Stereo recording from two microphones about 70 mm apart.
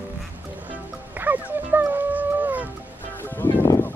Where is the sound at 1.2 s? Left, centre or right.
Right.